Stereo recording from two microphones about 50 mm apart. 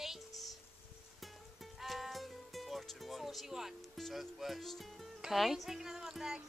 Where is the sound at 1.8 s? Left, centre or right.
Centre.